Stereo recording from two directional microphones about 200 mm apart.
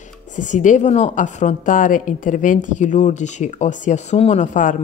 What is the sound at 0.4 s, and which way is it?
A woman's voice, 40° left (ahead or behind).